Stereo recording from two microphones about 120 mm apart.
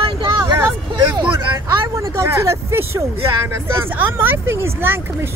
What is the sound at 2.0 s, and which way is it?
Speech, 25° right (ahead or behind).